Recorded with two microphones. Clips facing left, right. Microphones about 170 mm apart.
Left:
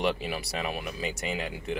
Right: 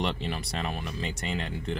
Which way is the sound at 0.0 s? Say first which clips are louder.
Left 2 dB; 5° left (ahead or behind).